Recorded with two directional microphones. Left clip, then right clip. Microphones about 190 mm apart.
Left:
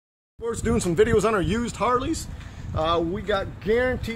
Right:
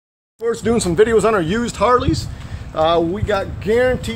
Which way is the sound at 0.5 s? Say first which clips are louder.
Right 7 dB; 45° left (ahead or behind).